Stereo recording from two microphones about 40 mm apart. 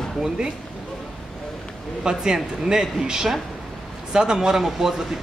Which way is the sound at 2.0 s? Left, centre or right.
Centre.